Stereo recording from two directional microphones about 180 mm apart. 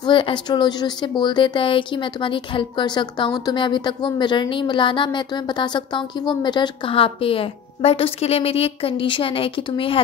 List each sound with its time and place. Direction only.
0.0 s speech: 25° left (ahead or behind)